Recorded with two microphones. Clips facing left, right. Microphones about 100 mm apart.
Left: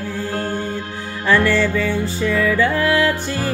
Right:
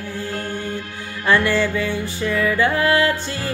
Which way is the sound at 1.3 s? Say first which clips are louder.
Left 2 dB; 15° right (ahead or behind).